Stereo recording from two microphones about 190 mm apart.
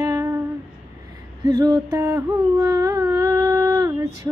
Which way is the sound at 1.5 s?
20° right (ahead or behind).